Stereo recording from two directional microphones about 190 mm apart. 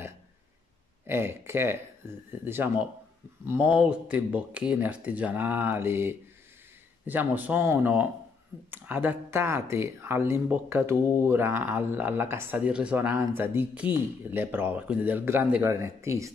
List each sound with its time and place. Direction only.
1.0 s speech: 10° right (ahead or behind)